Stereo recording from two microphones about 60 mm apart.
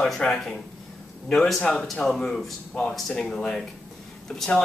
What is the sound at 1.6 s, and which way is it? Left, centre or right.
A man's voice, centre.